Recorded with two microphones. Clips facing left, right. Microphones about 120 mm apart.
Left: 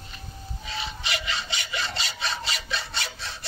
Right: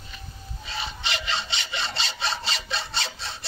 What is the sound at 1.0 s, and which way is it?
Sawing, 30° right (ahead or behind).